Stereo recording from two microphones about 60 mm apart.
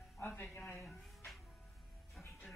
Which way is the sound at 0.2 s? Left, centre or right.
Left.